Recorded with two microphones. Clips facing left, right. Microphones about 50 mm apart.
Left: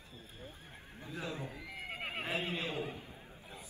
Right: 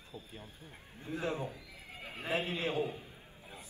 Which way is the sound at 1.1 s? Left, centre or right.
Right.